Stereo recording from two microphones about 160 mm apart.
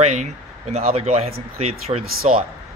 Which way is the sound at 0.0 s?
45° right (ahead or behind).